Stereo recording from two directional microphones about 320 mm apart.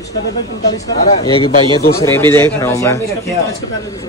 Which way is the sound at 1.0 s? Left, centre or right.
Centre.